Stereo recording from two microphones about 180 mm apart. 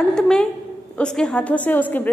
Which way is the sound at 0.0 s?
5° left (ahead or behind).